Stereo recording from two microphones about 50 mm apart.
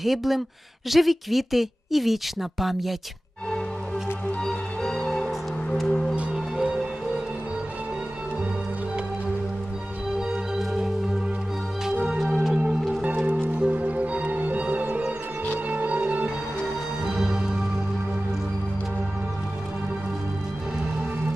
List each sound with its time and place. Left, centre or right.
0.0 s a woman's voice: centre
4.5 s music: centre
6.3 s music: centre
10.6 s music: centre
12.2 s music: centre
13.0 s music: right
16.6 s music: centre